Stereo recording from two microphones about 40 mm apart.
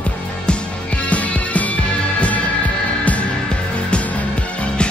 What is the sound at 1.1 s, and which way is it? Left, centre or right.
Music, left.